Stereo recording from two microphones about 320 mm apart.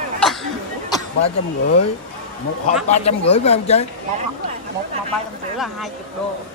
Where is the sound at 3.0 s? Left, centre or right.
Centre.